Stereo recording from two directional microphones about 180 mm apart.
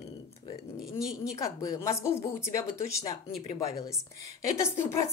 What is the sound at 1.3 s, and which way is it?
Speech, 20° left (ahead or behind).